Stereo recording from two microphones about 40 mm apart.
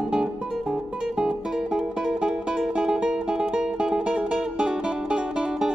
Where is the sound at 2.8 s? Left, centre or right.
Centre.